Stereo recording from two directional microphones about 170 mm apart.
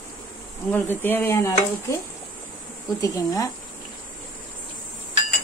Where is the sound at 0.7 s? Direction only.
10° left (ahead or behind).